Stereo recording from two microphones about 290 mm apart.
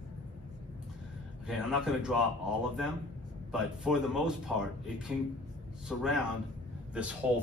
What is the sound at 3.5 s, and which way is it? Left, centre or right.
Speech, centre.